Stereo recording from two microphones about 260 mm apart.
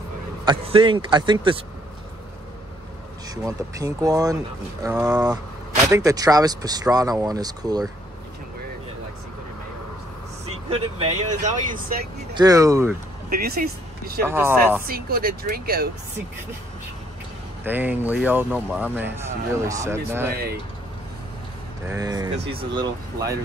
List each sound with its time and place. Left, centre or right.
0.5 s a man's voice: centre
3.4 s speech: centre
10.7 s a man's voice: right
12.4 s speech: centre
13.3 s speech: right
14.2 s speech: centre
14.9 s speech: right
17.6 s speech: centre
21.8 s speech: centre